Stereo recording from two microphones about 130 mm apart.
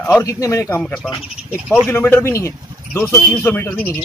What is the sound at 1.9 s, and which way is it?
Speech, 15° left (ahead or behind).